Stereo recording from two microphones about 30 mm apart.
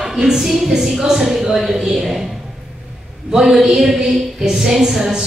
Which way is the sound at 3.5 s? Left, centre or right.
Centre.